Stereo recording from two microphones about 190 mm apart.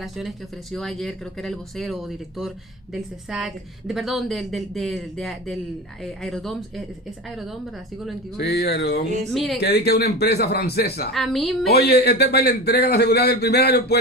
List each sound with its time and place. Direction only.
0.7 s speech: centre (ahead or behind)
8.4 s a man's voice: 55° left (ahead or behind)
9.3 s speech: centre (ahead or behind)
9.6 s a man's voice: 60° left (ahead or behind)
11.1 s speech: centre (ahead or behind)
11.6 s a man's voice: 55° left (ahead or behind)